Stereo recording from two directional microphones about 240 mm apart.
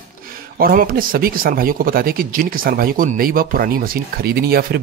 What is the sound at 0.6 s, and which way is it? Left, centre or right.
Speech, right.